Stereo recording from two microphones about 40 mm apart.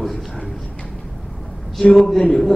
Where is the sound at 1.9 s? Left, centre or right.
Centre.